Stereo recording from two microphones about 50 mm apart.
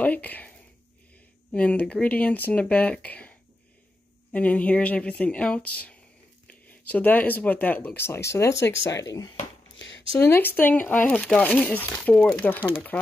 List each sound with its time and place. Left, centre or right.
0.0 s a sound: left
1.5 s a woman's voice: left
8.0 s speech: left
10.2 s a woman's voice: left
12.2 s speech: left
12.4 s a woman's voice: left